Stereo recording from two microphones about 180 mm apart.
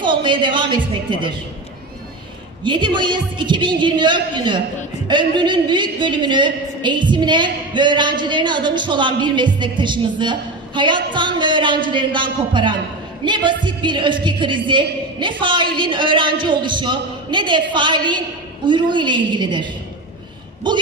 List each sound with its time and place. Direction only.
0.0 s a woman's voice: 25° right (ahead or behind)
2.6 s a woman's voice: 25° right (ahead or behind)